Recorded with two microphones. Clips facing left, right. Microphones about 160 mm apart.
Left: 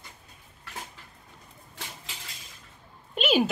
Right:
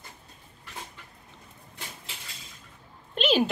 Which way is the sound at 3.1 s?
5° left (ahead or behind).